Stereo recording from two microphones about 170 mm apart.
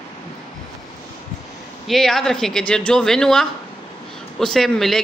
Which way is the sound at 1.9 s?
Centre (ahead or behind).